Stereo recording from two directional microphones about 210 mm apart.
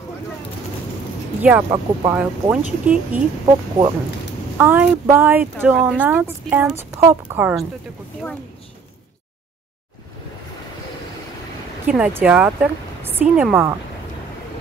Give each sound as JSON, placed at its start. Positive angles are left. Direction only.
{"t": 1.4, "sound": "speech", "side_deg": -10}
{"t": 3.4, "sound": "speech", "side_deg": -20}
{"t": 4.6, "sound": "speech", "side_deg": -10}
{"t": 11.8, "sound": "speech", "side_deg": -5}